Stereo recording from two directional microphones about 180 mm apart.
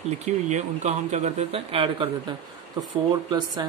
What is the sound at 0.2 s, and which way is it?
A man's voice, 40° right (ahead or behind).